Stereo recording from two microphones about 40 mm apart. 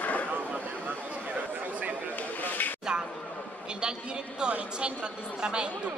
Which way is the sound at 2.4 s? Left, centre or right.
Left.